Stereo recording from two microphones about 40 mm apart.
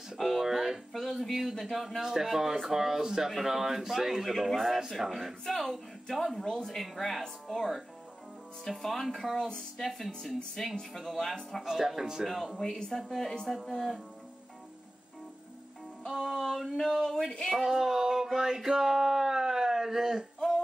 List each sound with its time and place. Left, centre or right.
0.2 s speech: centre
2.0 s speech: centre
4.7 s speech: centre
5.4 s speech: centre
9.8 s speech: centre
11.6 s speech: centre
12.7 s speech: centre
13.1 s speech: centre
16.1 s music: centre
16.7 s speech: centre
17.5 s a sound: centre